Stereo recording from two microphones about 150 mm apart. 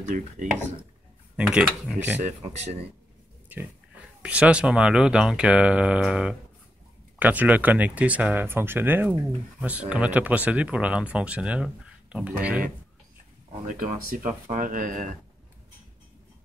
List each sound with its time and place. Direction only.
1.3 s speech: 5° right (ahead or behind)
2.5 s speech: 45° right (ahead or behind)
4.2 s speech: 10° right (ahead or behind)
13.7 s speech: 60° right (ahead or behind)